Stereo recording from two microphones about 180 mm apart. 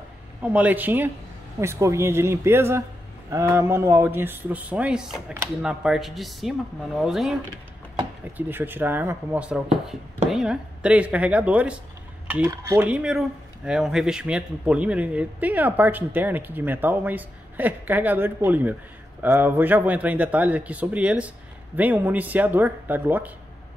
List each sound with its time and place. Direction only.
0.4 s a man's voice: 10° right (ahead or behind)